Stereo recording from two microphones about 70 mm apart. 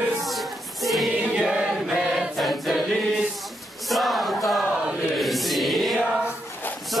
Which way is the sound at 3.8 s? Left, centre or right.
Centre.